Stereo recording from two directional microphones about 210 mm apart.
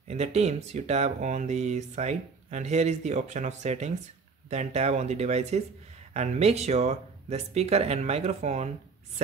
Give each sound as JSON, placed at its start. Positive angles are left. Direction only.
{"t": 0.1, "sound": "speech", "side_deg": -30}